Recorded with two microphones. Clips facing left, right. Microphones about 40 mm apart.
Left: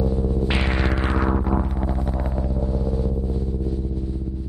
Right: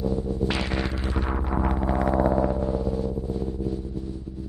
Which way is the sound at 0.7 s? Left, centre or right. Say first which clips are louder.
Left 5 dB; left.